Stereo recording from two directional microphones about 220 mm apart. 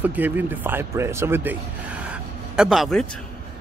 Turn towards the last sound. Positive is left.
turn(degrees=0)  # may be behind; listen again after turning